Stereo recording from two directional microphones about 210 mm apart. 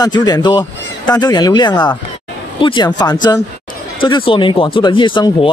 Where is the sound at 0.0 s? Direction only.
20° left (ahead or behind).